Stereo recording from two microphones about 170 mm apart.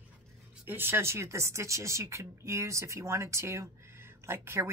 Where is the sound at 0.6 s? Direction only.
10° right (ahead or behind).